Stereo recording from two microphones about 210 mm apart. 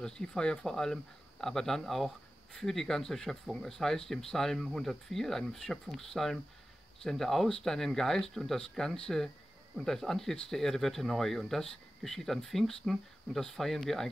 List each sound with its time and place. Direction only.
0.0 s speech: 5° left (ahead or behind)